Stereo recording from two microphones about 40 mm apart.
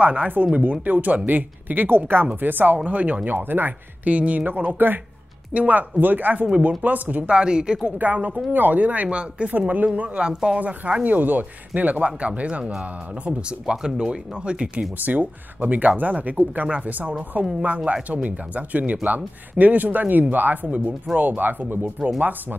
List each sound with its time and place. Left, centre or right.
0.0 s speech: right
2.4 s speech: right
2.8 s speech: right
3.3 s speech: right
4.5 s speech: right
5.5 s speech: right
6.4 s speech: right
8.0 s speech: right
9.6 s speech: right
10.2 s speech: right
11.1 s speech: right
13.2 s speech: right
15.0 s speech: right